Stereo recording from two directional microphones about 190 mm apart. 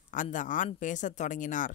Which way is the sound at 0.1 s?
45° left (ahead or behind).